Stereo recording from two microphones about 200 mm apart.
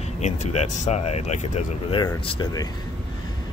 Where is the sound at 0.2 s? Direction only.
35° left (ahead or behind).